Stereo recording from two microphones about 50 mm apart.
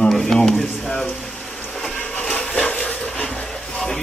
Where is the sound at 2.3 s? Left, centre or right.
Centre.